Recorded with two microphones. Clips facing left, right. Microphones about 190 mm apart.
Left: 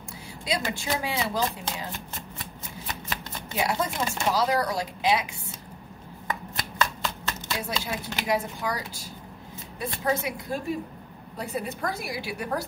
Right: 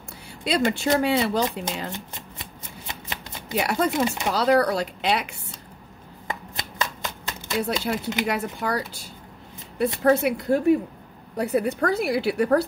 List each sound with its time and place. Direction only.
0.4 s speech: 65° right (ahead or behind)
3.5 s speech: 65° right (ahead or behind)
6.2 s shuffling cards: 20° right (ahead or behind)
7.6 s a woman's voice: 65° right (ahead or behind)